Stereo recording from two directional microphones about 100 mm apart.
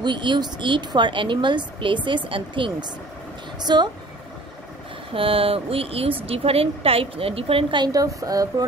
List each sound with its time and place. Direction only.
0.0 s speech: 50° right (ahead or behind)
5.1 s a woman's voice: 65° right (ahead or behind)
7.8 s speech: 35° right (ahead or behind)